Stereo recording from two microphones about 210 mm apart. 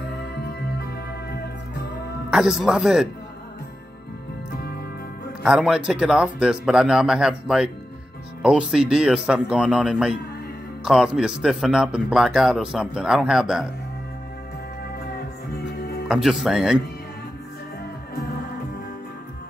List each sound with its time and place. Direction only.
0.6 s music: 50° left (ahead or behind)
2.3 s speech: 5° right (ahead or behind)
5.4 s speech: 5° right (ahead or behind)
16.1 s speech: centre (ahead or behind)